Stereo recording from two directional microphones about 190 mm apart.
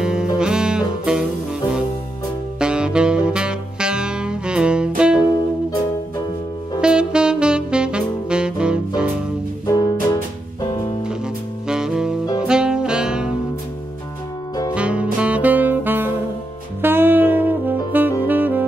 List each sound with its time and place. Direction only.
0.0 s music: 5° right (ahead or behind)
2.6 s music: 5° right (ahead or behind)
6.8 s saxophone: 5° right (ahead or behind)
9.7 s music: 20° left (ahead or behind)
11.6 s saxophone: 5° right (ahead or behind)
14.7 s music: 5° right (ahead or behind)
16.8 s saxophone: 10° right (ahead or behind)